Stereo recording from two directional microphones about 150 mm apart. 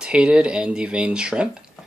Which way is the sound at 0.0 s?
5° right (ahead or behind).